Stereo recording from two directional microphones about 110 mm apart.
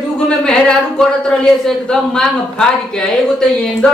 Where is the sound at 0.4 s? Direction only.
5° left (ahead or behind).